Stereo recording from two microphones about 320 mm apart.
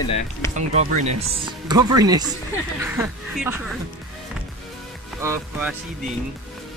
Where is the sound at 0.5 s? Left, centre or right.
Right.